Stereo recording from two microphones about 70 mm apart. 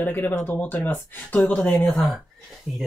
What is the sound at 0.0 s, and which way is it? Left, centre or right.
Speech, left.